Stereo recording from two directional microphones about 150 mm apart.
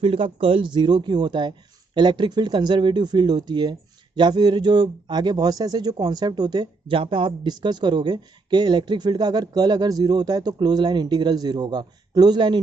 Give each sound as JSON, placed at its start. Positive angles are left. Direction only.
{"t": 0.0, "sound": "a man's voice", "side_deg": -35}